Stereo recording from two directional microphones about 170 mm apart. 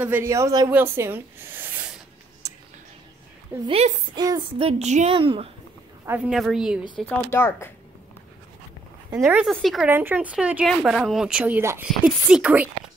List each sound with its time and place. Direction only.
0.0 s a woman's voice: 15° right (ahead or behind)
2.4 s whispering: 20° right (ahead or behind)
3.6 s child singing: 30° right (ahead or behind)
6.0 s speech: 5° right (ahead or behind)
7.2 s speech: 15° left (ahead or behind)
9.1 s speech: 5° right (ahead or behind)
9.8 s speech: 10° right (ahead or behind)